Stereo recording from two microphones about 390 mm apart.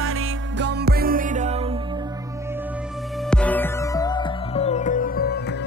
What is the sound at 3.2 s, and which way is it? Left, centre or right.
Music, centre.